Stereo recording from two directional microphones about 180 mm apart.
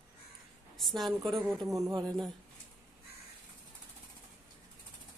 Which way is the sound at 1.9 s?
20° right (ahead or behind).